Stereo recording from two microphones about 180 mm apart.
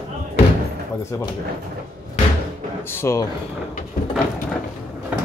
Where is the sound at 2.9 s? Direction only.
15° left (ahead or behind).